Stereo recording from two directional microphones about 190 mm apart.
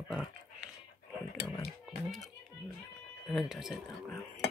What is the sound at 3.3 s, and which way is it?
Speech, centre (ahead or behind).